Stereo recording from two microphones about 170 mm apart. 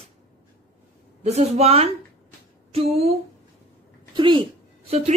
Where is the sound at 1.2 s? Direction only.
40° right (ahead or behind).